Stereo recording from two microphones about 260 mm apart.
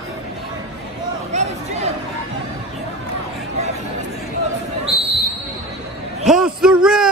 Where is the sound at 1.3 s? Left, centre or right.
Right.